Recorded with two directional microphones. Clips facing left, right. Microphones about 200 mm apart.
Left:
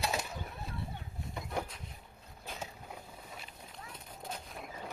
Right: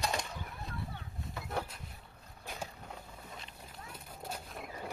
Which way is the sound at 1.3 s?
20° left (ahead or behind).